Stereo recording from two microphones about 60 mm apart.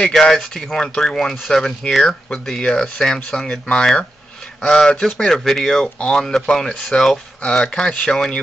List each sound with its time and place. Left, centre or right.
0.0 s speech: centre